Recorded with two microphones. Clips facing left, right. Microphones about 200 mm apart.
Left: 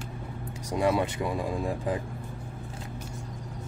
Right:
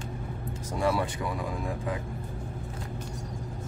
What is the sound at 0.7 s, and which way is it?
Speech, 20° left (ahead or behind).